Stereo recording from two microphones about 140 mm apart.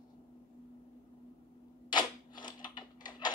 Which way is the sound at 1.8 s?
30° left (ahead or behind).